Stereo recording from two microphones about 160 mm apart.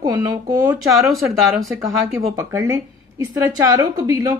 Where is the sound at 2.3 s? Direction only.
20° right (ahead or behind).